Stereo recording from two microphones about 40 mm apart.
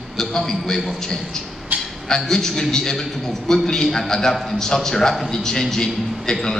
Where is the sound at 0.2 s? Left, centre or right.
Centre.